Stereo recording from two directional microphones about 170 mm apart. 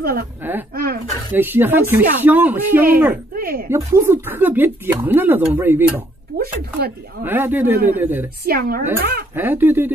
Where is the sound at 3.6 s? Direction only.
15° right (ahead or behind).